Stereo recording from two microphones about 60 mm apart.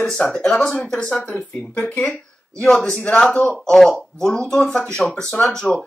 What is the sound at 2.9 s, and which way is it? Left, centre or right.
Speech, left.